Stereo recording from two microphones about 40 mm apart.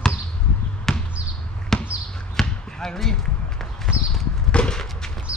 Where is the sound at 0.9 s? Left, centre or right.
Centre.